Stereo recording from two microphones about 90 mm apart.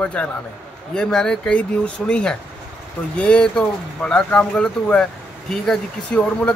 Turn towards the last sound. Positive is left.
turn(degrees=10)  # may be behind; listen again after turning